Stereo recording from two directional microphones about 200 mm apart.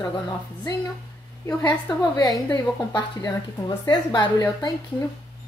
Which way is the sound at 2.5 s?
20° left (ahead or behind).